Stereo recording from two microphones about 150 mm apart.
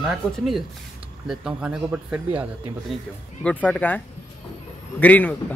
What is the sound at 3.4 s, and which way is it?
Speech, 10° left (ahead or behind).